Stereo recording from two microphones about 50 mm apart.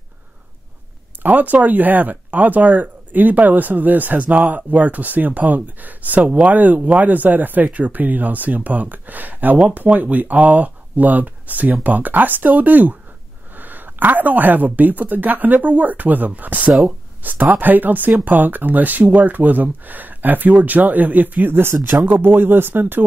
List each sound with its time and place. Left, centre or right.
1.2 s speech: right